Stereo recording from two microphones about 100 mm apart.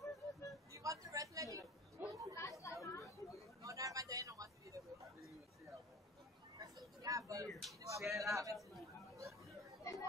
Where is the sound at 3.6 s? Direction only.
35° right (ahead or behind).